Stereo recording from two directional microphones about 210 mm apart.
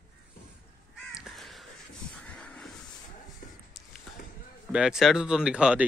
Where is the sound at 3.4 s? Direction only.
40° left (ahead or behind).